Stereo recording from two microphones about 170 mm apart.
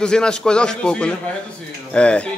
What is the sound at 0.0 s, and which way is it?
A man's voice, 5° left (ahead or behind).